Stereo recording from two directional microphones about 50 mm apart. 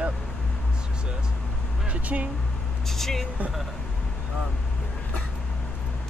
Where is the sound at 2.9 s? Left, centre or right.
Centre.